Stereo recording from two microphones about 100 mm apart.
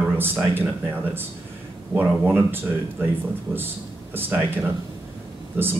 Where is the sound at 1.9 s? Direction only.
20° right (ahead or behind).